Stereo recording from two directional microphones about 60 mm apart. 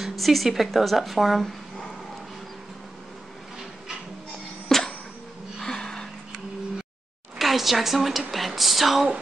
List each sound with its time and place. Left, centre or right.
0.0 s speech: centre
4.6 s music: centre
7.3 s a sound: centre
8.3 s speech: centre